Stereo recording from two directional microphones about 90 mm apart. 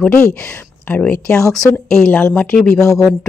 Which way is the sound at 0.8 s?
20° left (ahead or behind).